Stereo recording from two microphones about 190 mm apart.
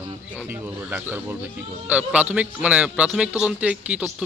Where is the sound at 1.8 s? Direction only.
5° right (ahead or behind).